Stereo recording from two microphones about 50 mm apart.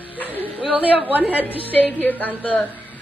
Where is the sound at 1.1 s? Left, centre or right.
Right.